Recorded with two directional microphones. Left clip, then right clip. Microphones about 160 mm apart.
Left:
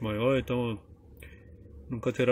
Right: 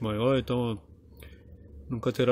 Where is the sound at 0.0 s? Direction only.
15° right (ahead or behind).